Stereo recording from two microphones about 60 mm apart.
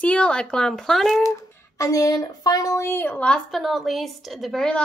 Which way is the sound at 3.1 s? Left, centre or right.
Centre.